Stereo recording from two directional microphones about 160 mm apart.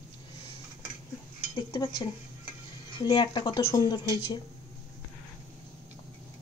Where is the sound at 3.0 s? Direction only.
30° left (ahead or behind).